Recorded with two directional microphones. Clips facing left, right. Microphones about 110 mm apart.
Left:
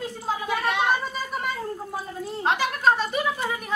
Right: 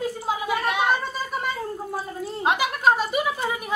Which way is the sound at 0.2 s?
10° right (ahead or behind).